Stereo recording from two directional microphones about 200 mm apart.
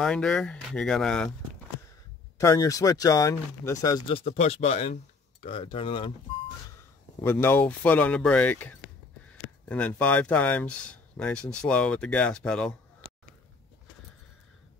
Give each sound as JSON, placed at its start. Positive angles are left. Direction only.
{"t": 0.0, "sound": "speech", "side_deg": 5}
{"t": 2.3, "sound": "speech", "side_deg": 15}
{"t": 4.1, "sound": "speech", "side_deg": 30}
{"t": 7.2, "sound": "speech", "side_deg": 10}